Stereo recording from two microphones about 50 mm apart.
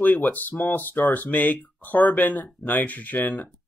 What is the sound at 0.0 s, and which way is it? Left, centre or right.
Speech, left.